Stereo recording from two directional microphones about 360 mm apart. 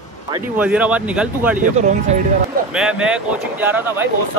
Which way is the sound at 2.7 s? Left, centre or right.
Centre.